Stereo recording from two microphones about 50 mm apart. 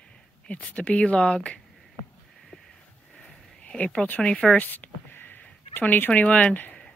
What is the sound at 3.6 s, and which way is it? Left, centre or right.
Speech, left.